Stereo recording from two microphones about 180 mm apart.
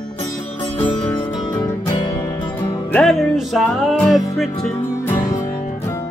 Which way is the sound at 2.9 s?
5° left (ahead or behind).